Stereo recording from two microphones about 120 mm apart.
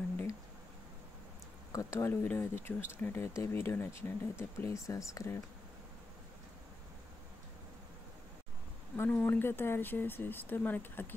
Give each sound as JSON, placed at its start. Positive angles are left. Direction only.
{"t": 1.7, "sound": "speech", "side_deg": 25}
{"t": 8.9, "sound": "speech", "side_deg": 15}